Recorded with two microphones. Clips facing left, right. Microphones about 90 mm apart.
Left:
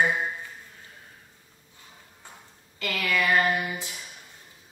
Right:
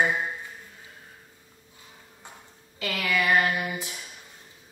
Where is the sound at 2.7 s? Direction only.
15° right (ahead or behind).